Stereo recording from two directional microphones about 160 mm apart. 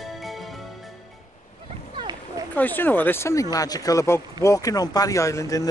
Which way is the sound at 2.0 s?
30° right (ahead or behind).